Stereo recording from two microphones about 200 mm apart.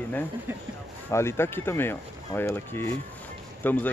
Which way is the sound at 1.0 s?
10° left (ahead or behind).